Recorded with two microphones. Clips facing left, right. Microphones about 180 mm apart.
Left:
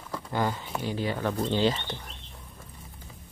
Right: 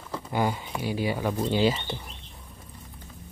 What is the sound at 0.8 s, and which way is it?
Speech, 10° right (ahead or behind).